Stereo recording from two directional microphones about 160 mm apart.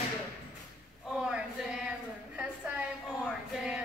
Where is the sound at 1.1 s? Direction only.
5° right (ahead or behind).